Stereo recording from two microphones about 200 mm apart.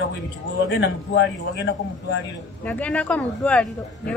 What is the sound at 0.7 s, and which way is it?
A man's voice, 65° left (ahead or behind).